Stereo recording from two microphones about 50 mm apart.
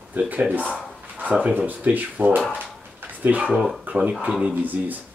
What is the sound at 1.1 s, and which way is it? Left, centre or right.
Speech, right.